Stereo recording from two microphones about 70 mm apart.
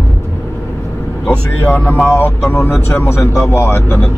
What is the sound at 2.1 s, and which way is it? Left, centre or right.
Speech, left.